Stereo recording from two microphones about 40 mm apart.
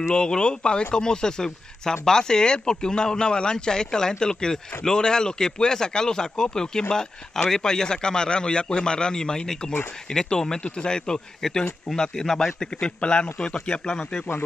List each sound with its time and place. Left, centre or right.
0.1 s a man's voice: left
13.0 s a man's voice: left